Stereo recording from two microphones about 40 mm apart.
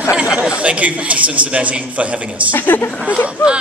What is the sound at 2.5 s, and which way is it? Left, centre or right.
Speech, left.